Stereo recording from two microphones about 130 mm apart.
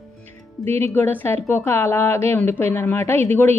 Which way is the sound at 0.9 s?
15° left (ahead or behind).